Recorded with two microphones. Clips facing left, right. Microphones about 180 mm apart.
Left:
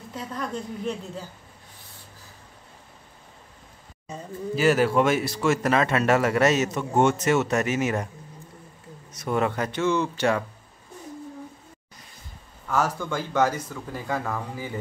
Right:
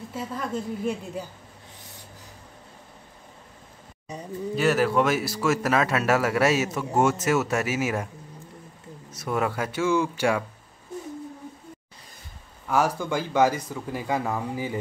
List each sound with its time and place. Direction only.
0.1 s speech: 5° right (ahead or behind)
4.6 s speech: centre (ahead or behind)
9.1 s speech: 5° right (ahead or behind)
12.6 s speech: 10° right (ahead or behind)